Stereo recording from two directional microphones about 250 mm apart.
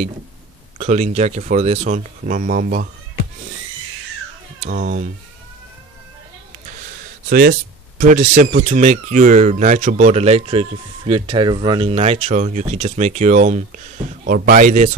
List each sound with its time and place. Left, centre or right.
0.7 s speech: right
4.6 s speech: right
7.2 s speech: right